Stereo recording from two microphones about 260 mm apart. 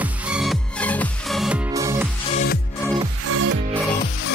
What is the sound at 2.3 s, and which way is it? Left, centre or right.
Music, left.